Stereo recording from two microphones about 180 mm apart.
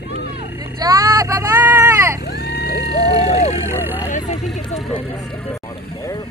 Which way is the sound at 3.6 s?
10° right (ahead or behind).